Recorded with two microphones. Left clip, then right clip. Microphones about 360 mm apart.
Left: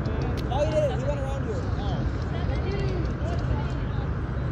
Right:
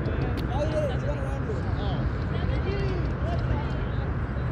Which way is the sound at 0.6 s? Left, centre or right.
Centre.